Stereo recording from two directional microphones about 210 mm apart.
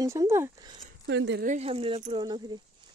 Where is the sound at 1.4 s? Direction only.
35° right (ahead or behind).